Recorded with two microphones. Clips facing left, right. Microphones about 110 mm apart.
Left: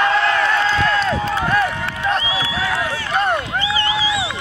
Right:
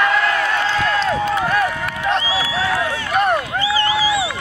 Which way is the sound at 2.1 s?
30° right (ahead or behind).